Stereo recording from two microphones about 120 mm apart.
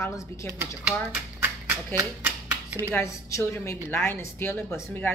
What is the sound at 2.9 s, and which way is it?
A woman's voice, 20° left (ahead or behind).